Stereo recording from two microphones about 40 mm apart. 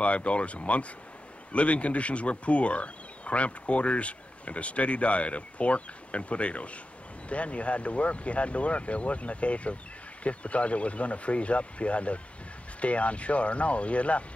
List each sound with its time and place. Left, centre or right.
0.0 s speech: left